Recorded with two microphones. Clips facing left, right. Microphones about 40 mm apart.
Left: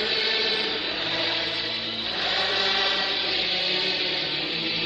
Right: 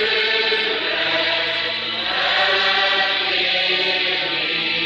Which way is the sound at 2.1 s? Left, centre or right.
Right.